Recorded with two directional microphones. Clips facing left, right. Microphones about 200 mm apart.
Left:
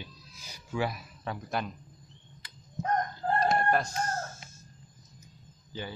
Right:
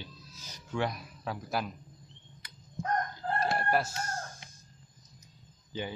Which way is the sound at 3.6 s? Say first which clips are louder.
Left 2 dB; 5° right (ahead or behind).